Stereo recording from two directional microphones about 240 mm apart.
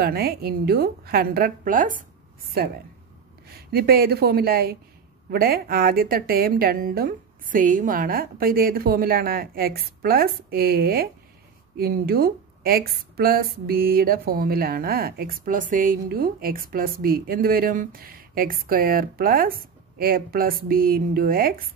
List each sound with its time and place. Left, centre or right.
0.0 s a woman's voice: right
3.4 s a woman's voice: right